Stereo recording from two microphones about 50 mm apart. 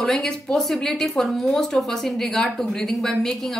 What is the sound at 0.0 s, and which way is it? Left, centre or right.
Speech, centre.